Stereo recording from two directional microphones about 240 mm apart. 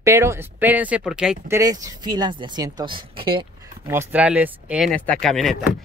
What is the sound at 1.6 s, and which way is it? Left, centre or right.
Speech, centre.